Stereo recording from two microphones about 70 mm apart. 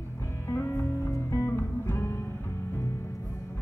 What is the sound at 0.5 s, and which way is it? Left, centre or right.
Music, left.